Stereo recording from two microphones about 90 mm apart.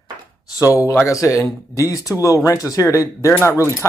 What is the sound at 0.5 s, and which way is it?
Speech, 35° left (ahead or behind).